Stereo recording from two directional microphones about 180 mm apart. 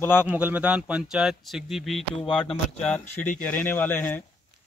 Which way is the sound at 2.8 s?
10° left (ahead or behind).